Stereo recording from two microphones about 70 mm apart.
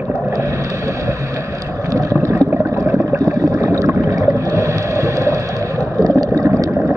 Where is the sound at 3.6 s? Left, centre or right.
Right.